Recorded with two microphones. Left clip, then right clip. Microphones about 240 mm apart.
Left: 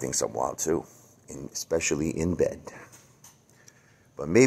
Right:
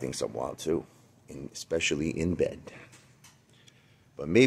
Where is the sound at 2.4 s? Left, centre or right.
Centre.